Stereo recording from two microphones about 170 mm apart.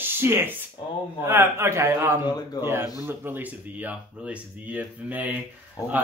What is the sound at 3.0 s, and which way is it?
Speech, 10° right (ahead or behind).